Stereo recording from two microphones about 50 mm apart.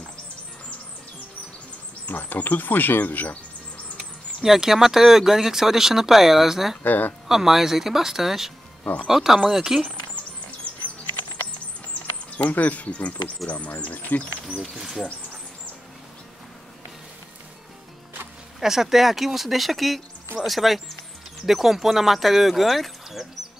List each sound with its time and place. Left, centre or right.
2.0 s speech: left
4.4 s speech: centre
6.8 s speech: left
7.2 s speech: centre
12.4 s speech: left
14.6 s speech: centre
18.6 s speech: centre